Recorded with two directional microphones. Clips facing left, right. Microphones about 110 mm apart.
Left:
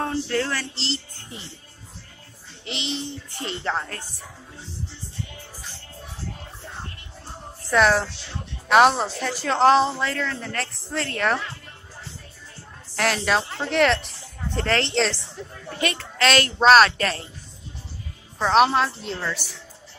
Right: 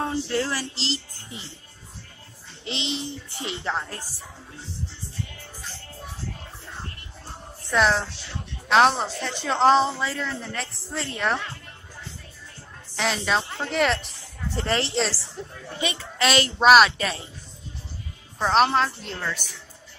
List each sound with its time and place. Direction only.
0.0 s a sound: 20° right (ahead or behind)
0.5 s speech: 10° right (ahead or behind)
2.6 s a child's voice: 25° right (ahead or behind)
3.3 s speech: 5° right (ahead or behind)
7.7 s speech: centre (ahead or behind)
12.9 s a woman's voice: centre (ahead or behind)
18.4 s speech: centre (ahead or behind)